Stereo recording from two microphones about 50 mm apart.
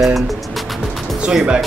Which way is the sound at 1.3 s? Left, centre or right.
Centre.